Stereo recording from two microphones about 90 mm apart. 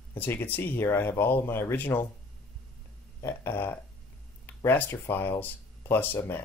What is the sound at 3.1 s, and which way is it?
Speech, 25° left (ahead or behind).